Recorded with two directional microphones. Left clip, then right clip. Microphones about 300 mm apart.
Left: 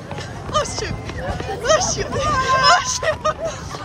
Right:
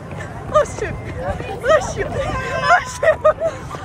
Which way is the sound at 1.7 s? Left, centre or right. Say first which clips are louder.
Right 2 dB; centre.